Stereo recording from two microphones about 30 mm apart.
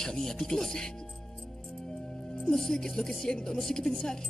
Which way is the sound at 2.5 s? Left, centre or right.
Centre.